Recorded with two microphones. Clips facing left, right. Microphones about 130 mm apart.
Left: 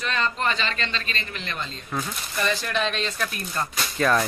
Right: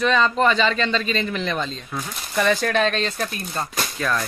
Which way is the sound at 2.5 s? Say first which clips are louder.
Right 7 dB; 45° right (ahead or behind).